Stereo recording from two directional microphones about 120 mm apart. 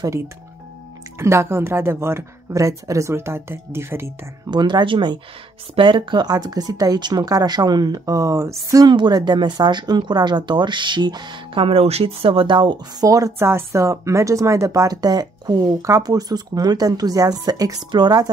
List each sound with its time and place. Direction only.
1.1 s a woman's voice: 20° right (ahead or behind)
4.5 s a woman's voice: 40° right (ahead or behind)